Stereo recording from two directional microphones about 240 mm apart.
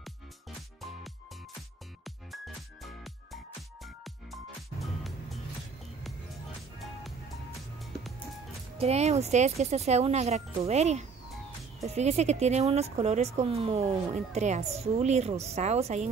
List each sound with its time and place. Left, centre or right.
2.0 s music: centre
8.7 s speech: right